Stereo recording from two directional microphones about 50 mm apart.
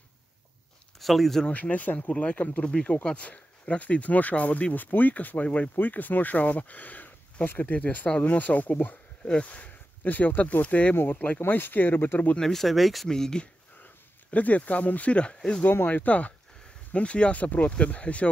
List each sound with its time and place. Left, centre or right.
0.9 s speech: centre
1.5 s speech: left
9.2 s speech: left
11.0 s speech: left
12.4 s speech: centre
13.1 s speech: centre
14.3 s speech: left
15.9 s speech: left